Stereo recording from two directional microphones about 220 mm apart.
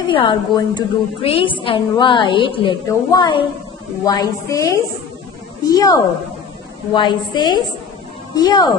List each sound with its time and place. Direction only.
0.1 s a woman's voice: 20° left (ahead or behind)